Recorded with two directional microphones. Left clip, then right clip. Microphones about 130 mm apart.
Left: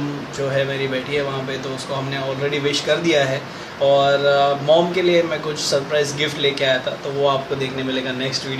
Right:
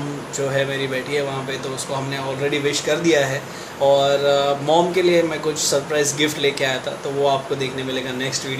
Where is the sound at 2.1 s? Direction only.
25° right (ahead or behind).